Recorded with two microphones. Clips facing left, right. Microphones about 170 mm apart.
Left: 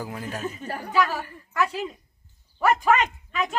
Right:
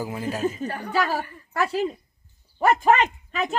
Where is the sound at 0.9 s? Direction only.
35° right (ahead or behind).